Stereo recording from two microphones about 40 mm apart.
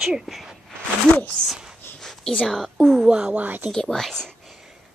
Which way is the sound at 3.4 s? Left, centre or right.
Right.